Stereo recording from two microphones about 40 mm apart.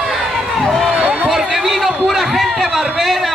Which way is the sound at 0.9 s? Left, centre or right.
Right.